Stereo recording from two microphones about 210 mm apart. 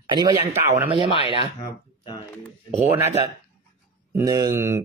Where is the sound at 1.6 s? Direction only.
15° left (ahead or behind).